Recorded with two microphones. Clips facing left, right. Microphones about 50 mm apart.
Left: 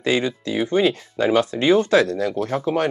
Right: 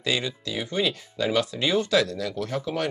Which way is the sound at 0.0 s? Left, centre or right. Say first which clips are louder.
Left 7 dB; left.